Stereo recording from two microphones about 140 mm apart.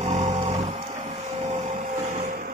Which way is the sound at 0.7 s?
60° right (ahead or behind).